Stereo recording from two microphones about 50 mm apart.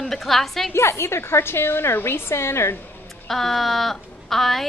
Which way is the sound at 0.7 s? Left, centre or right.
Left.